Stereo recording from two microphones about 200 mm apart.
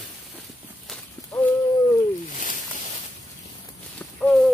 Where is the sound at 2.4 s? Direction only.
40° left (ahead or behind).